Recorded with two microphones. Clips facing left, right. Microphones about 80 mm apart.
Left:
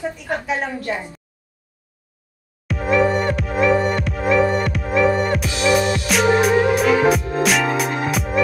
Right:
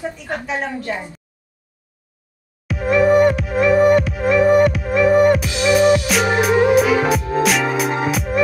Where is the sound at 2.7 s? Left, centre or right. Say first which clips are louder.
Right 3 dB; centre.